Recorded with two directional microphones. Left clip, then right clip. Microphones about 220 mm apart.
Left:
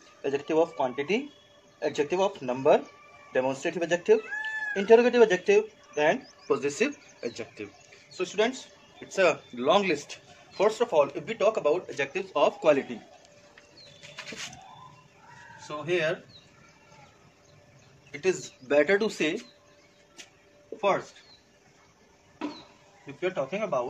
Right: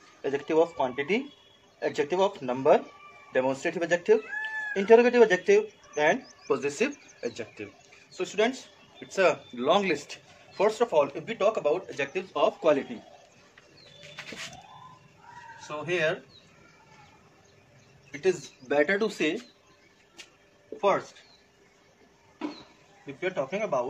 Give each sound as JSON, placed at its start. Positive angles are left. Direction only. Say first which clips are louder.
{"t": 0.2, "sound": "speech", "louder": "right 1 dB", "side_deg": 10}
{"t": 15.7, "sound": "speech", "louder": "even", "side_deg": 10}
{"t": 18.7, "sound": "speech", "louder": "left 2 dB", "side_deg": 30}
{"t": 23.2, "sound": "speech", "louder": "even", "side_deg": 10}